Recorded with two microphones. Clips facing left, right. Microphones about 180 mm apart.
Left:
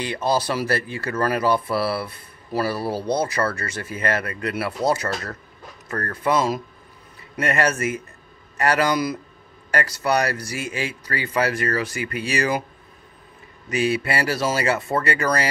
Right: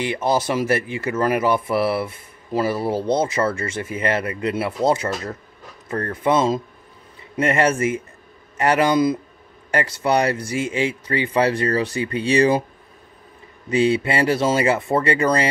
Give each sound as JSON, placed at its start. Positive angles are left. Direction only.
{"t": 0.0, "sound": "speech", "side_deg": -20}
{"t": 13.7, "sound": "speech", "side_deg": -25}